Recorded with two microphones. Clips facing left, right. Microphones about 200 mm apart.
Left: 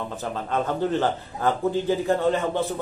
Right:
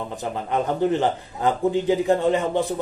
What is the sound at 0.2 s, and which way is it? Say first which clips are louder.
A man's voice: right 2 dB; 15° right (ahead or behind).